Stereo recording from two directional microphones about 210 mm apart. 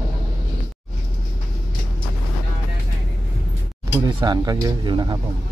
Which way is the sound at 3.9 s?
20° right (ahead or behind).